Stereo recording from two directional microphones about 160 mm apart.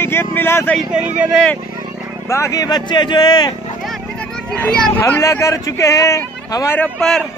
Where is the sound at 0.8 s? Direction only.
5° right (ahead or behind).